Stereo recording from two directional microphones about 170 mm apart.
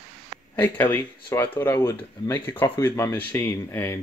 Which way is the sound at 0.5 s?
10° left (ahead or behind).